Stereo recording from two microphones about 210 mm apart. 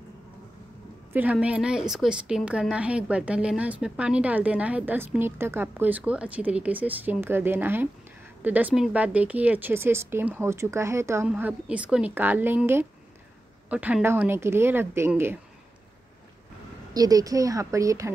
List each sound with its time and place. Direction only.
1.1 s a woman's voice: 5° right (ahead or behind)
16.9 s a woman's voice: 15° right (ahead or behind)